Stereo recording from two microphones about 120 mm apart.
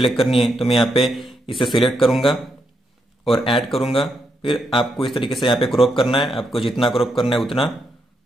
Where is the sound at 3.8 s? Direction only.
50° left (ahead or behind).